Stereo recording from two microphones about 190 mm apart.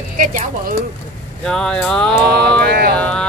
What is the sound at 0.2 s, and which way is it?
Speech, 45° right (ahead or behind).